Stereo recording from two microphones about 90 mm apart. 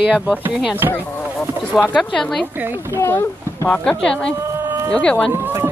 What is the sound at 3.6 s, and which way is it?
Speech, 15° left (ahead or behind).